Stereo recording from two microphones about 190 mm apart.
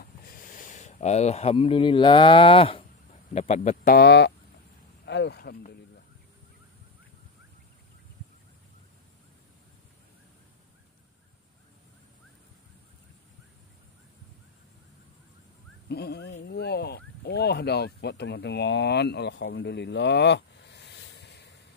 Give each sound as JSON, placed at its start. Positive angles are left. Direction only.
{"t": 0.0, "sound": "speech", "side_deg": 45}
{"t": 15.9, "sound": "speech", "side_deg": 60}